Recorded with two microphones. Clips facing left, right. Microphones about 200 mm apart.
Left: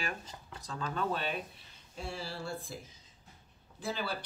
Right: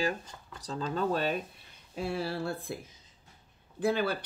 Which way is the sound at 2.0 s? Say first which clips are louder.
Right 8 dB; 60° right (ahead or behind).